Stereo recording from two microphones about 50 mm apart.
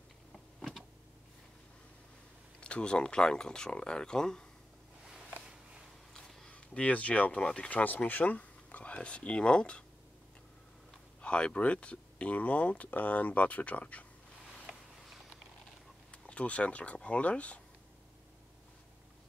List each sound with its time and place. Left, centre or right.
0.3 s power windows: centre
2.6 s speech: left
6.5 s speech: left
7.7 s speech: left
11.1 s speech: left
16.1 s speech: left